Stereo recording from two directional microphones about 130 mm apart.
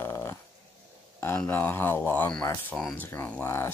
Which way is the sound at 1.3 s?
15° left (ahead or behind).